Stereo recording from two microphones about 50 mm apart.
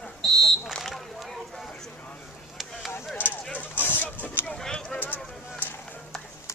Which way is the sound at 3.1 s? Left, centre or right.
Left.